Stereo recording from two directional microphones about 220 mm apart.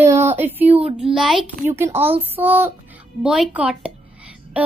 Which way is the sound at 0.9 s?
Centre (ahead or behind).